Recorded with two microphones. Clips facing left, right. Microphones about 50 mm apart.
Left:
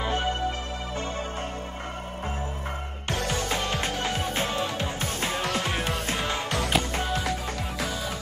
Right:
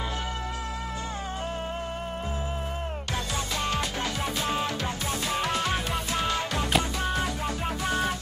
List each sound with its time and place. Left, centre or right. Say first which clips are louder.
3.7 s music: left 2 dB; left
6.7 s music: right 1 dB; centre